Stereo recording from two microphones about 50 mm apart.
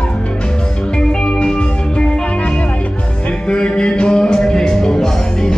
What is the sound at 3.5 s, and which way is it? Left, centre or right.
Music, centre.